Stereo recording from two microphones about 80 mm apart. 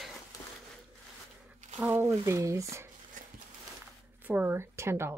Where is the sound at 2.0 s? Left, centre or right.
Right.